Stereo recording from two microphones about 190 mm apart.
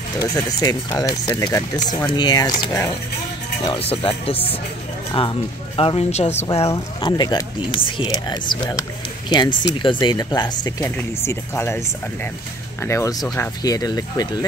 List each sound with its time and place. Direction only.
0.2 s speech: 20° left (ahead or behind)
12.8 s speech: 15° left (ahead or behind)